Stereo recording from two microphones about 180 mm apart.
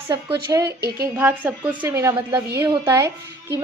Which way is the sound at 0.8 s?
60° right (ahead or behind).